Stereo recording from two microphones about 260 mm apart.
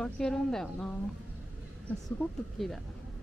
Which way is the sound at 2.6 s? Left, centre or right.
Centre.